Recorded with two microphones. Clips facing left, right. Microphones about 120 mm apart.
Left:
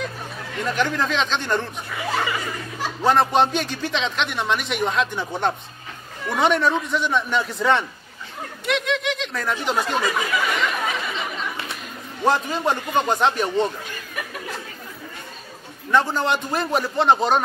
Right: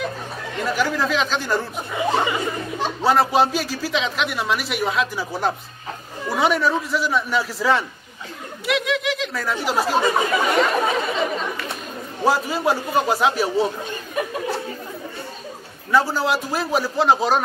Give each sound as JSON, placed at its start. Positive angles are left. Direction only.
{"t": 0.7, "sound": "a man's voice", "side_deg": -5}
{"t": 1.9, "sound": "speech", "side_deg": -25}
{"t": 3.0, "sound": "a man's voice", "side_deg": -5}
{"t": 9.9, "sound": "speech", "side_deg": -30}
{"t": 12.3, "sound": "a man's voice", "side_deg": -5}
{"t": 13.8, "sound": "a sound", "side_deg": -25}
{"t": 15.9, "sound": "a man's voice", "side_deg": -5}